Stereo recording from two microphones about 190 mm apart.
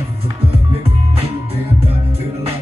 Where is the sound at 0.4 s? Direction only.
30° right (ahead or behind).